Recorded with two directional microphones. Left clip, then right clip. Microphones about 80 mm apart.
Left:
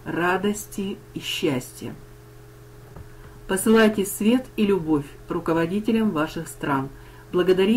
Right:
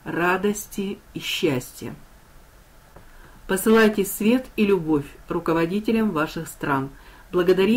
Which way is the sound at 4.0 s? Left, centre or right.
Centre.